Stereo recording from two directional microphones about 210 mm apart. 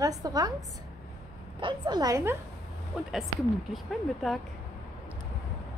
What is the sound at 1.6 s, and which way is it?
Speech, 20° right (ahead or behind).